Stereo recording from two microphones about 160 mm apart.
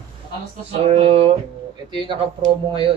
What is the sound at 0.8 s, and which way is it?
Speech, 40° right (ahead or behind).